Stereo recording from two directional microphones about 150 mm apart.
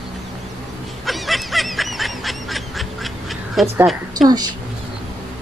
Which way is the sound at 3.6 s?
Centre (ahead or behind).